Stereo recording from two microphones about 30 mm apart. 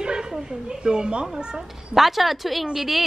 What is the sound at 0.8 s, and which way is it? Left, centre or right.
Speech, right.